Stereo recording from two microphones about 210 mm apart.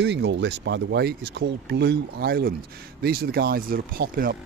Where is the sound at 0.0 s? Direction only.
55° right (ahead or behind).